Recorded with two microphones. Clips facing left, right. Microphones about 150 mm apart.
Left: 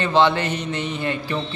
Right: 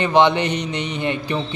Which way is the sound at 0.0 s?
15° right (ahead or behind).